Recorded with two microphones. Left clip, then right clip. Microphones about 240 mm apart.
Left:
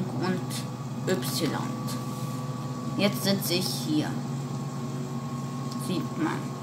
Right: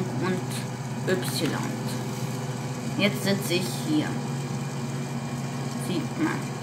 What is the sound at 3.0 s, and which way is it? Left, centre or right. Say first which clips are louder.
A woman's voice: right 1 dB; centre.